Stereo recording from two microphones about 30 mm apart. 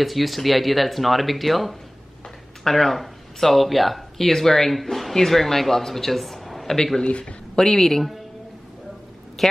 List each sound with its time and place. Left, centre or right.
0.0 s speech: centre
2.6 s speech: centre
4.3 s a man's voice: centre
7.1 s speech: left
7.5 s speech: centre
9.4 s a sound: centre